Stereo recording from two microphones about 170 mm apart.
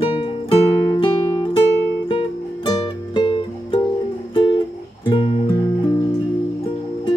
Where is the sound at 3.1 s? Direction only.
30° left (ahead or behind).